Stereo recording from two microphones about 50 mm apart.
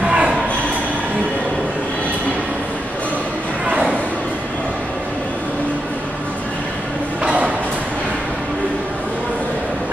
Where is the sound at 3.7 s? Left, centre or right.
Right.